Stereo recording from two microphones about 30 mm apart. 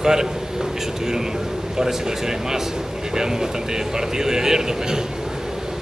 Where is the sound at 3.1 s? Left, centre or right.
Centre.